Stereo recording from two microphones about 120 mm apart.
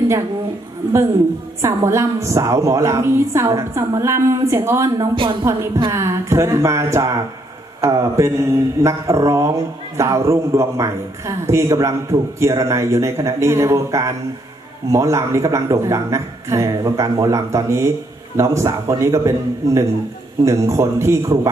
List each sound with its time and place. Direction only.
1.6 s speech: 20° right (ahead or behind)
5.1 s speech: 45° right (ahead or behind)
5.4 s speech: 25° right (ahead or behind)